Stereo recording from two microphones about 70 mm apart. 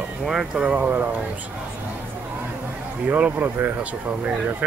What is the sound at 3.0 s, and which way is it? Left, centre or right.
Speech, right.